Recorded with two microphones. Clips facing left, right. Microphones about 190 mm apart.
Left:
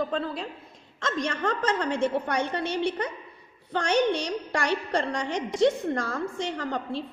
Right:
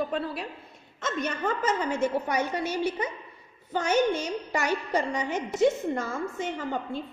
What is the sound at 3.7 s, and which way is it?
A woman's voice, 5° right (ahead or behind).